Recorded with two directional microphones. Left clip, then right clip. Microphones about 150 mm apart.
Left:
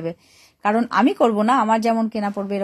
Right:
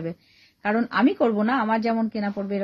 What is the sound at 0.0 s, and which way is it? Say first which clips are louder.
Speech: left 5 dB; 15° left (ahead or behind).